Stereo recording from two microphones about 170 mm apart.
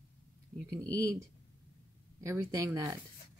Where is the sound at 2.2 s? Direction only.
20° right (ahead or behind).